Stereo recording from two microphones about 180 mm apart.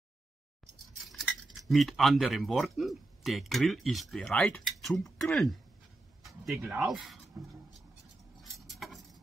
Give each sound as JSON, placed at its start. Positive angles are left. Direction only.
{"t": 1.0, "sound": "speech", "side_deg": 0}
{"t": 6.2, "sound": "a sound", "side_deg": 0}
{"t": 6.6, "sound": "speech", "side_deg": -5}
{"t": 8.4, "sound": "keys jangling", "side_deg": 0}